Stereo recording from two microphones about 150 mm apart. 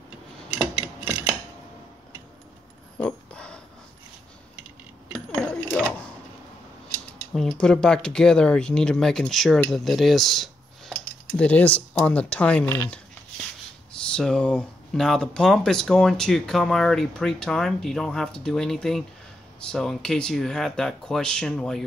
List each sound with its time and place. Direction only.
0.6 s filing: 5° right (ahead or behind)
3.0 s a sound: 5° left (ahead or behind)
5.6 s a sound: 10° left (ahead or behind)
7.3 s speech: 5° left (ahead or behind)
12.6 s speech: 20° left (ahead or behind)
14.0 s speech: 5° left (ahead or behind)